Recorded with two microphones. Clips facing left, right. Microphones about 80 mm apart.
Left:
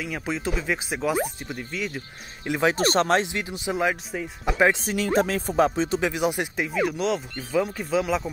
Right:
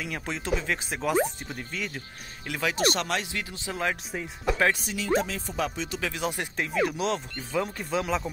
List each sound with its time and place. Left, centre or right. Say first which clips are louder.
0.0 s speech: left 4 dB; centre
2.4 s speech: left 7 dB; left
2.7 s speech: left 5 dB; left
3.3 s speech: left 6 dB; left
3.9 s speech: left 3 dB; centre
4.5 s speech: left 4 dB; centre
4.8 s speech: left 4 dB; left
5.6 s speech: left 9 dB; left
5.9 s speech: left 6 dB; centre